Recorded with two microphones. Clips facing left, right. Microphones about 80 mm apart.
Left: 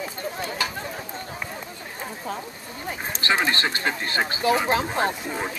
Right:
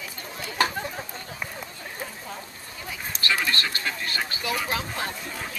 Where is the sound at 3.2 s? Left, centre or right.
Left.